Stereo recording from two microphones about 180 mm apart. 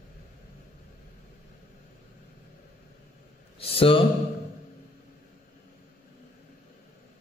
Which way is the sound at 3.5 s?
30° left (ahead or behind).